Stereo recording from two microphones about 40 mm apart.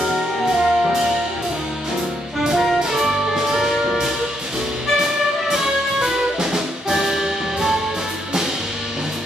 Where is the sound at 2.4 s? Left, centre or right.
Centre.